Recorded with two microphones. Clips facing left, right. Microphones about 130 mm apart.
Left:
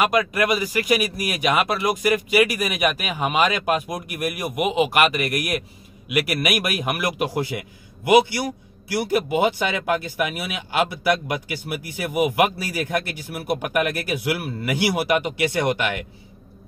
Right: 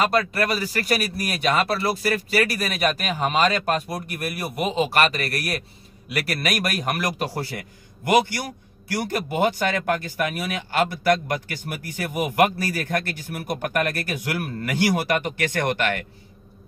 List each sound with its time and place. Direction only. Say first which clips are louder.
0.0 s speech: left 1 dB; 15° left (ahead or behind)
8.0 s a man's voice: left 3 dB; 45° right (ahead or behind)
8.8 s speech: left 4 dB; 10° left (ahead or behind)